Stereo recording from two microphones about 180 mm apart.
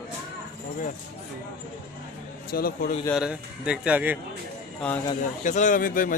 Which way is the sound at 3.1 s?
5° right (ahead or behind).